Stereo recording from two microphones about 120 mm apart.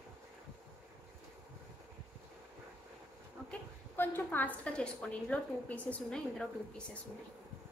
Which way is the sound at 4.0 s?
15° left (ahead or behind).